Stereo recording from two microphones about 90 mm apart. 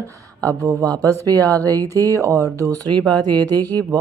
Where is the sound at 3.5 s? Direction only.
20° left (ahead or behind).